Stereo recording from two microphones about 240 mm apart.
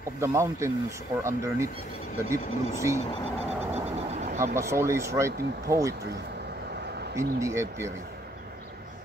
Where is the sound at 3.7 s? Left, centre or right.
Right.